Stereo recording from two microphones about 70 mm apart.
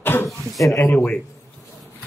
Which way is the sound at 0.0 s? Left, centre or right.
Left.